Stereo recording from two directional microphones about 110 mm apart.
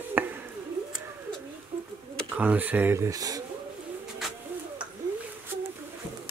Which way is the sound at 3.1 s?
35° right (ahead or behind).